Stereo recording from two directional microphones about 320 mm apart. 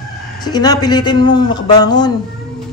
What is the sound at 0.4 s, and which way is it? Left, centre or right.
Speech, centre.